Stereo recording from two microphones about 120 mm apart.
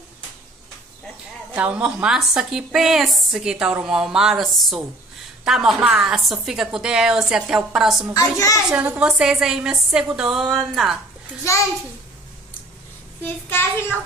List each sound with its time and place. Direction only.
1.5 s a woman's voice: 10° right (ahead or behind)
8.1 s a woman's voice: 30° left (ahead or behind)
8.7 s a woman's voice: 10° right (ahead or behind)
10.5 s a woman's voice: 5° left (ahead or behind)
13.2 s a child's voice: 20° left (ahead or behind)